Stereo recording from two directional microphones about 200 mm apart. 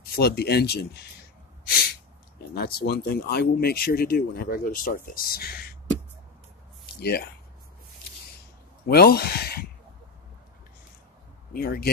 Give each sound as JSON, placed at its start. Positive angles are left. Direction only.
{"t": 0.1, "sound": "speech", "side_deg": 55}
{"t": 1.7, "sound": "sneeze", "side_deg": 50}
{"t": 2.5, "sound": "speech", "side_deg": 50}
{"t": 7.0, "sound": "speech", "side_deg": 55}
{"t": 8.8, "sound": "speech", "side_deg": 50}
{"t": 11.5, "sound": "speech", "side_deg": 50}